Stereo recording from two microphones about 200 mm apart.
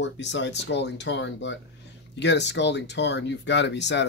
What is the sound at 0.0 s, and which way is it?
Speech, 65° left (ahead or behind).